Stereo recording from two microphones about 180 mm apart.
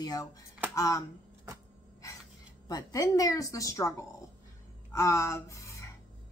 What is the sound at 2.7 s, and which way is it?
A woman's voice, 20° left (ahead or behind).